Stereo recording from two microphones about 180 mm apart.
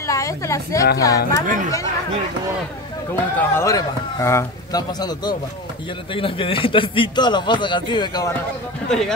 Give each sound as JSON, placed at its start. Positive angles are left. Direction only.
{"t": 0.0, "sound": "a woman's voice", "side_deg": 15}
{"t": 3.3, "sound": "a man's voice", "side_deg": 15}